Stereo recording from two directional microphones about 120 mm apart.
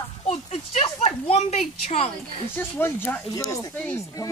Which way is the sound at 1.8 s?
55° left (ahead or behind).